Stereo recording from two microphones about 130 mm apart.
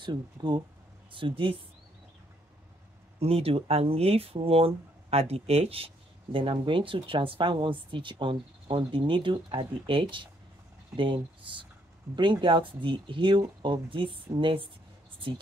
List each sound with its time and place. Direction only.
0.0 s speech: 35° right (ahead or behind)
3.2 s speech: 45° right (ahead or behind)